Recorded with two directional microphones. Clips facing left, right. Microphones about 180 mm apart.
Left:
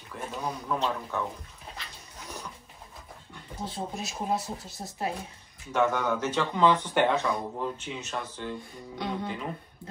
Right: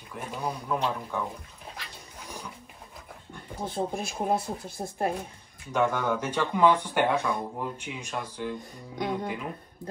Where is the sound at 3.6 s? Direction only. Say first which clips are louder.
Right 4 dB; 50° right (ahead or behind).